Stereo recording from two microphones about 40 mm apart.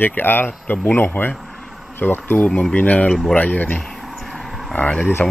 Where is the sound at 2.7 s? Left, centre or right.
Left.